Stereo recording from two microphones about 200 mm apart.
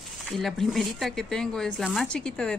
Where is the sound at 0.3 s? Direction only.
Centre (ahead or behind).